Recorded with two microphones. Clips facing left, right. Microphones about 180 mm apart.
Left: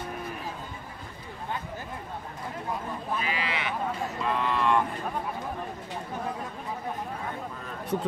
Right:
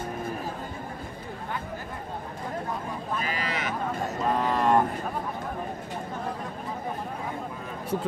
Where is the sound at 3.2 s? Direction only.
40° right (ahead or behind).